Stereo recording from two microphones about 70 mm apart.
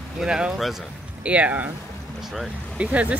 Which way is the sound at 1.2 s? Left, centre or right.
Centre.